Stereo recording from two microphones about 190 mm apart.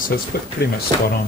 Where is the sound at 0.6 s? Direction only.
55° left (ahead or behind).